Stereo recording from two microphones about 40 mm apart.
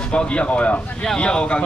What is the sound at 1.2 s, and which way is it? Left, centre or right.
Speech, left.